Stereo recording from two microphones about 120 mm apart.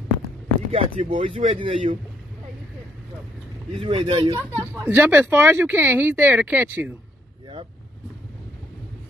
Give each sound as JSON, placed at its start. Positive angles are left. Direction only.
{"t": 0.7, "sound": "speech", "side_deg": -55}
{"t": 3.8, "sound": "speech", "side_deg": -50}
{"t": 4.6, "sound": "speech", "side_deg": -15}